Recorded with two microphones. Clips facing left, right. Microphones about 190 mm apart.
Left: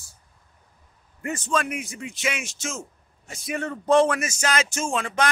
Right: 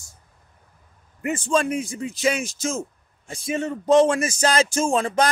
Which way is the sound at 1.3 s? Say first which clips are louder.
Right 5 dB; 30° right (ahead or behind).